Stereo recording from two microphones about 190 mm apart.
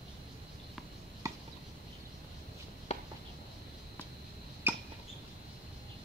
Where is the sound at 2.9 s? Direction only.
35° left (ahead or behind).